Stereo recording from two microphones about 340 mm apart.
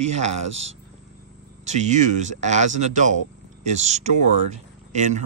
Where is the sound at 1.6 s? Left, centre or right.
Right.